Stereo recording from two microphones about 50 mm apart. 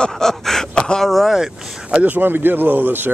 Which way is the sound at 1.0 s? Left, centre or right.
Centre.